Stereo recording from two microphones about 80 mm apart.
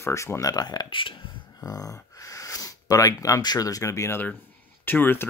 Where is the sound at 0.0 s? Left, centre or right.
Left.